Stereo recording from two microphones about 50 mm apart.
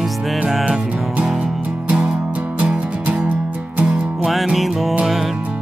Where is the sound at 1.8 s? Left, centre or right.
Right.